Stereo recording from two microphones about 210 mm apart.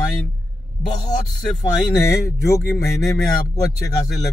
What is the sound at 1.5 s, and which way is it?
Speech, 15° left (ahead or behind).